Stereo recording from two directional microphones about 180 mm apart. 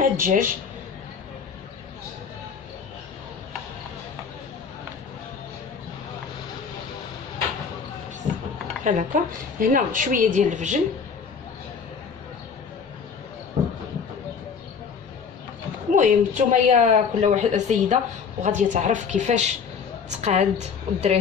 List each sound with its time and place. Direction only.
0.0 s speech: 50° right (ahead or behind)
8.8 s a woman's voice: 45° right (ahead or behind)
15.9 s a woman's voice: 45° right (ahead or behind)